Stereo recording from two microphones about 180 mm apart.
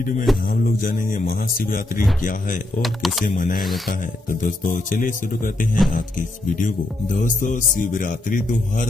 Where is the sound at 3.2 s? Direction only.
50° left (ahead or behind).